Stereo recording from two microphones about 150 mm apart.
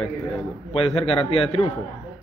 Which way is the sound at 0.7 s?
40° left (ahead or behind).